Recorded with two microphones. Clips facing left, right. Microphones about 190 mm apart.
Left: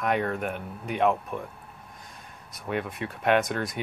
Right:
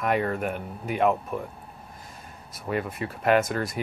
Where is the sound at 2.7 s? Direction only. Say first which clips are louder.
Right 2 dB; centre (ahead or behind).